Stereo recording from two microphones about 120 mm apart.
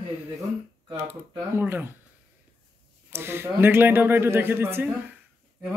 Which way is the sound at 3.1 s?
20° right (ahead or behind).